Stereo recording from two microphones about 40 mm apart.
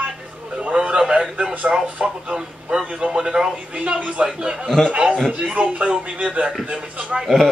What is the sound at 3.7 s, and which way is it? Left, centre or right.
Speech, right.